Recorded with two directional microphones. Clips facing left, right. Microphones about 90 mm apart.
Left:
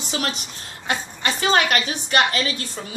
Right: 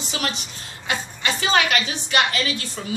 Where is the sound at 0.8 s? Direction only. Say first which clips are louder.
Left 1 dB; 40° left (ahead or behind).